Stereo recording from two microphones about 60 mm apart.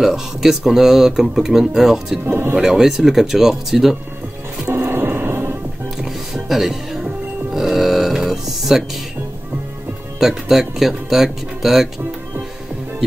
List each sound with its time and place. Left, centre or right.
0.0 s speech: centre
2.2 s speech: right
2.5 s speech: centre
4.6 s music: right
5.9 s music: centre
10.1 s speech: centre